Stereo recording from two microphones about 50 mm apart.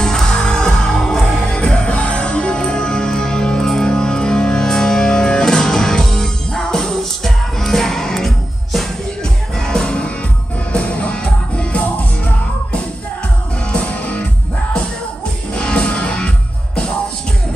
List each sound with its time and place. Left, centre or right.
0.0 s music: centre
13.7 s music: left
15.5 s music: left